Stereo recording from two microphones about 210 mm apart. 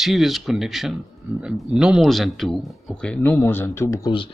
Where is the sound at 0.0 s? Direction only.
Centre (ahead or behind).